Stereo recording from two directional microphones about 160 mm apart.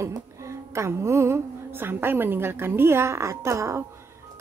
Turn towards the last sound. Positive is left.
turn(degrees=-20)  # may be behind; listen again after turning